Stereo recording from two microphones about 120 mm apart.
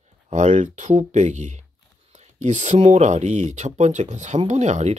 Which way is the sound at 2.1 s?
75° right (ahead or behind).